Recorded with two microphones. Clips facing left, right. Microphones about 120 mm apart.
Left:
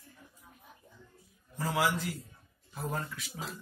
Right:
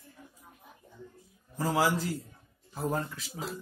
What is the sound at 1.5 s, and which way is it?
Speech, 35° right (ahead or behind).